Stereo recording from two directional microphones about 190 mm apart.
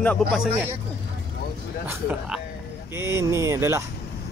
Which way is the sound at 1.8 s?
5° right (ahead or behind).